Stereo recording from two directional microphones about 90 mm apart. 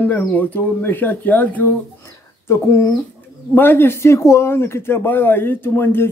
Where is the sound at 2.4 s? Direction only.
30° left (ahead or behind).